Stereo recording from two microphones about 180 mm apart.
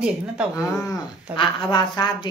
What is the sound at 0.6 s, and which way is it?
A woman's voice, 15° left (ahead or behind).